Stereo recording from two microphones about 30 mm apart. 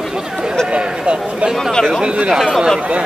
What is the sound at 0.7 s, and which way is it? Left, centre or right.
Speech, right.